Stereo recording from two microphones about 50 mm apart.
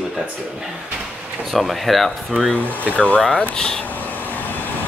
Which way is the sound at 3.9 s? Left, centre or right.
Left.